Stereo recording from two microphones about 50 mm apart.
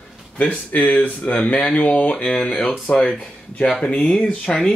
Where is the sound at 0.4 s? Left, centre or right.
Left.